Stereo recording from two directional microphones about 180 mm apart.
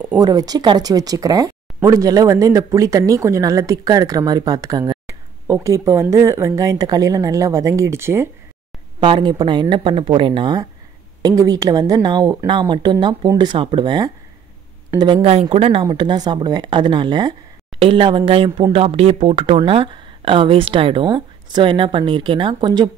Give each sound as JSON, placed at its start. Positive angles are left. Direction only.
{"t": 0.2, "sound": "speech", "side_deg": -20}
{"t": 9.0, "sound": "speech", "side_deg": -25}